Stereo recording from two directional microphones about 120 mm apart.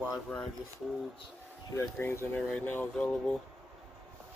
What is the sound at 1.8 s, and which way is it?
Speech, 20° left (ahead or behind).